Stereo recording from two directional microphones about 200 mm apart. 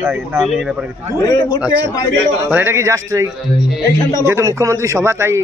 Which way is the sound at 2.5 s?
10° right (ahead or behind).